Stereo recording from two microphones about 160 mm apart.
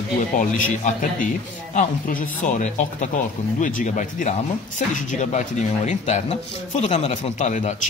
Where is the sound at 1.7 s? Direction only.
50° left (ahead or behind).